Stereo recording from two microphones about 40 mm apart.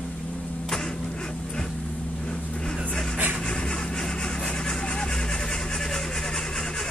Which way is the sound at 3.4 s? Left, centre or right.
Left.